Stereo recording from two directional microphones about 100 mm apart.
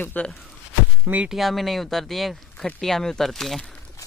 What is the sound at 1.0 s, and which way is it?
Speech, 15° right (ahead or behind).